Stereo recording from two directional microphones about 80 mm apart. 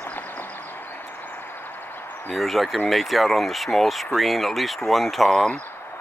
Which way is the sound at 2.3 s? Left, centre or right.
Centre.